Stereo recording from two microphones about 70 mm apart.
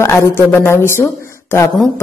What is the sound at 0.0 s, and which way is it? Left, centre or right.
A woman's voice, left.